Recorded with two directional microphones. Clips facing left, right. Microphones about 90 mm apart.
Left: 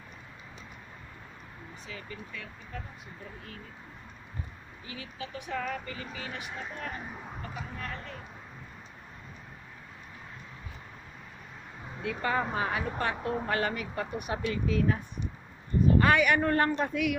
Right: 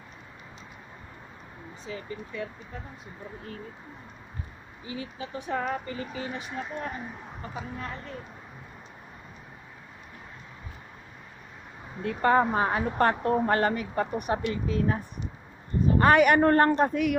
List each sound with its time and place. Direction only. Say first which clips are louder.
1.9 s speech: right 7 dB; 30° right (ahead or behind)
4.8 s speech: right 5 dB; 30° right (ahead or behind)
12.0 s speech: right 8 dB; 45° right (ahead or behind)
16.0 s speech: right 8 dB; 45° right (ahead or behind)